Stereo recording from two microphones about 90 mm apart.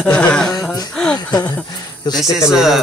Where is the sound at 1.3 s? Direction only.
50° left (ahead or behind).